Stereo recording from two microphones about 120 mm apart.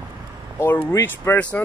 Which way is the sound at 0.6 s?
20° left (ahead or behind).